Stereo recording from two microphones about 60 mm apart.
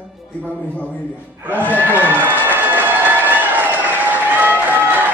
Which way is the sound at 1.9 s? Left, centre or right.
Right.